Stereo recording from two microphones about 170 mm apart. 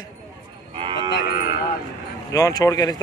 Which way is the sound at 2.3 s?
20° left (ahead or behind).